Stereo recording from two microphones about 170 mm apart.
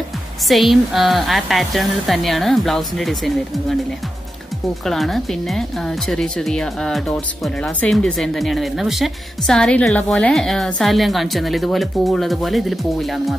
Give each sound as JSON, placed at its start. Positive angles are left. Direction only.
{"t": 0.5, "sound": "speech", "side_deg": 0}
{"t": 4.8, "sound": "speech", "side_deg": 0}